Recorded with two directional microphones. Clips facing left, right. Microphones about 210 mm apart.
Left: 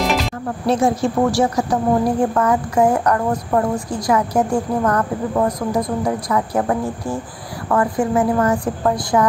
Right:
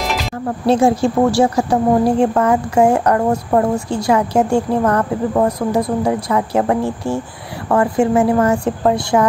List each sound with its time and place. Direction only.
0.7 s a woman's voice: 30° right (ahead or behind)